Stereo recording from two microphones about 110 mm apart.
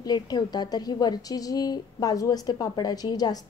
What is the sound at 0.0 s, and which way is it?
A woman's voice, 40° left (ahead or behind).